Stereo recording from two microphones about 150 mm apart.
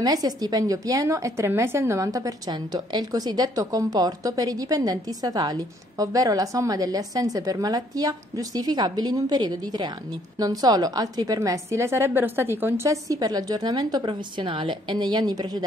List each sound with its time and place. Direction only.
0.0 s a woman's voice: 25° right (ahead or behind)